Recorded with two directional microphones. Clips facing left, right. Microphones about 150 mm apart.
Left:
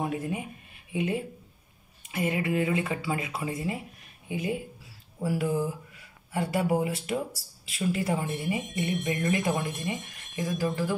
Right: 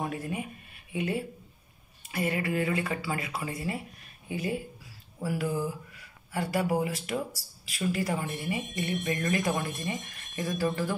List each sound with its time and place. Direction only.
0.0 s speech: 20° left (ahead or behind)